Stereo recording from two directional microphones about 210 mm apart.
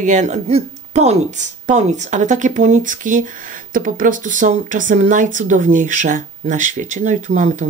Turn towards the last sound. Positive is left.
turn(degrees=-35)  # may be behind; listen again after turning